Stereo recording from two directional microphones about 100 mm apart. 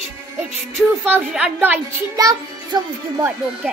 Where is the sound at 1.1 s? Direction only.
15° right (ahead or behind).